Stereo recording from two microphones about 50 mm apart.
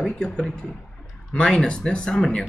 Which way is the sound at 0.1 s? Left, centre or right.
Centre.